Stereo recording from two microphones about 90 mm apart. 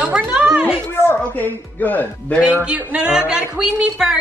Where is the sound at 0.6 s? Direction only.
25° left (ahead or behind).